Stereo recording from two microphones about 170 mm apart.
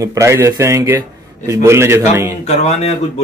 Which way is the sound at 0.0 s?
20° right (ahead or behind).